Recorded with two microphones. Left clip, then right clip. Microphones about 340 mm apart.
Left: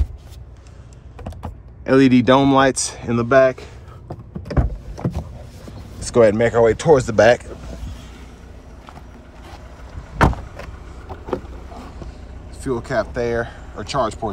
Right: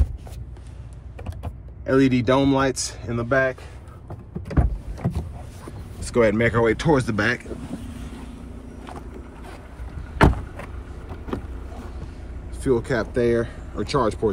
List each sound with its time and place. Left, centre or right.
1.9 s speech: left
5.9 s speech: centre
10.1 s vehicle: centre
12.6 s speech: centre